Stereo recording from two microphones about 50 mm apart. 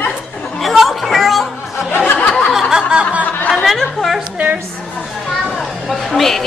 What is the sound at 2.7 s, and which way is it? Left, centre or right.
Snicker, centre.